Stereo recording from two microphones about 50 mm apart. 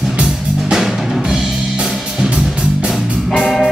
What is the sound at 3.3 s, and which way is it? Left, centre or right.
Music, centre.